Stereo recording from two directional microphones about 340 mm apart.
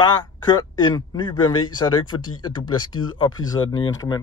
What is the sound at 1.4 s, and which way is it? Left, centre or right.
Speech, left.